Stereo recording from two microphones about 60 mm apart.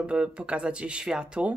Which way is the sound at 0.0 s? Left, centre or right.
Centre.